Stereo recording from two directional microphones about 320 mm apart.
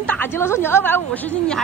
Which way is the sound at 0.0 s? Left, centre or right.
Centre.